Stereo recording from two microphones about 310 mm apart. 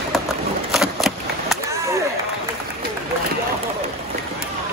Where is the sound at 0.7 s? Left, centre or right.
Centre.